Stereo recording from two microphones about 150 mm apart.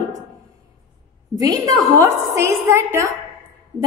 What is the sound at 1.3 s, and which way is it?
A woman's voice, 25° right (ahead or behind).